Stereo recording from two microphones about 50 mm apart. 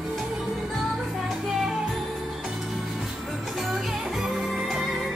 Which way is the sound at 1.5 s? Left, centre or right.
Centre.